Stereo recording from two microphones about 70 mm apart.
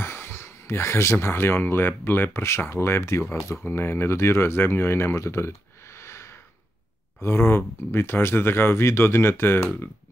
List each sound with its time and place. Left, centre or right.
0.0 s speech: left
5.9 s a sound: left
7.2 s speech: left